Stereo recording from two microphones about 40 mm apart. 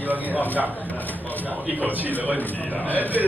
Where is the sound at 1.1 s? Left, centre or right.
Left.